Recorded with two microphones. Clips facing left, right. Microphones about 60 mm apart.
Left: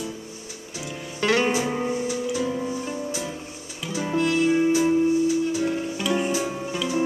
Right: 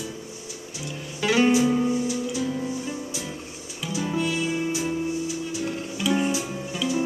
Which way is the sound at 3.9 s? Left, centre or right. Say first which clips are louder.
Left 1 dB; left.